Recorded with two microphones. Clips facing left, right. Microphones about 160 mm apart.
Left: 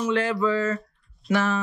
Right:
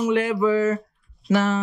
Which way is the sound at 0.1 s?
20° right (ahead or behind).